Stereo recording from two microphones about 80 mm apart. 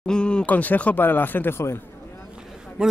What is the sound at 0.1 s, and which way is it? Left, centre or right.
Speech, centre.